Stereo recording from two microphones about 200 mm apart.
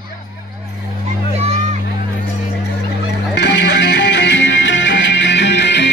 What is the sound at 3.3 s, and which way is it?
Music, 60° left (ahead or behind).